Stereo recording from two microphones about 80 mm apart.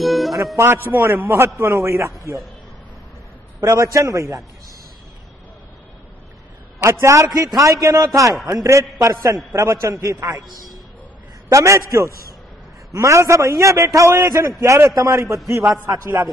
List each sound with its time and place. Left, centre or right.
0.0 s music: centre
0.6 s a man's voice: right
3.6 s a man's voice: right
6.8 s a man's voice: right
11.5 s a man's voice: right